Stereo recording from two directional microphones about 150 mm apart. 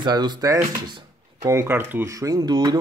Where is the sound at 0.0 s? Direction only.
30° right (ahead or behind).